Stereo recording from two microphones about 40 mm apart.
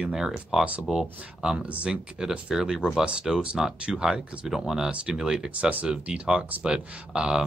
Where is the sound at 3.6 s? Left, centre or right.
Centre.